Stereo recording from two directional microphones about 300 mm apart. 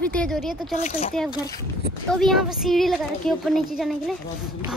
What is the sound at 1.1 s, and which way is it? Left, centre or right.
A child's voice, centre.